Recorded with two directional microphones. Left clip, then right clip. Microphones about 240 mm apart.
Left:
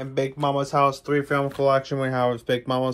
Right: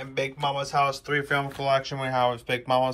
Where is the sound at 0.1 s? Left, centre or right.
Centre.